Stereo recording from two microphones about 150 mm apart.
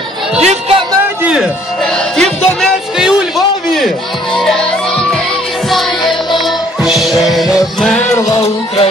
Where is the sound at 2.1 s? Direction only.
Centre (ahead or behind).